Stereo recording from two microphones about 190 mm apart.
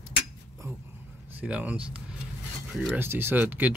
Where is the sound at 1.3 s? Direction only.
5° right (ahead or behind).